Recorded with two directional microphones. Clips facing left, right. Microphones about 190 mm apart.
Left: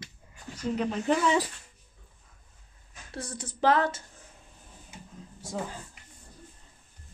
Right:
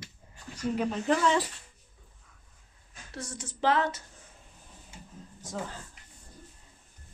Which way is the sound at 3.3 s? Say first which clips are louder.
Left 3 dB; 40° left (ahead or behind).